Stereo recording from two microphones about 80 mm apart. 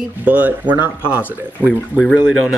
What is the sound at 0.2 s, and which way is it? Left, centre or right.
Speech, right.